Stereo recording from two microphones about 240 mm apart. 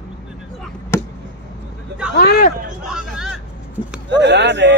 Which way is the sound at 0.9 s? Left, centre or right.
Centre.